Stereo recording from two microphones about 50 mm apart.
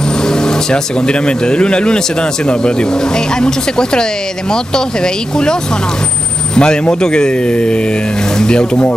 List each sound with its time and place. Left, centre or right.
0.2 s speech: centre